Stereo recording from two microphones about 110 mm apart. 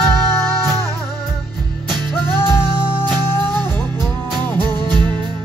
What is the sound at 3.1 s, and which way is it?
Music, 15° left (ahead or behind).